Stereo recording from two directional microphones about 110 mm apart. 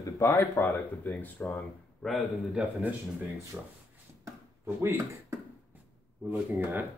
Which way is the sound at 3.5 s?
15° right (ahead or behind).